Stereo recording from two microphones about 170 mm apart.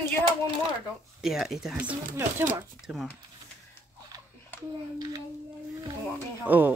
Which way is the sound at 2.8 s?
Centre (ahead or behind).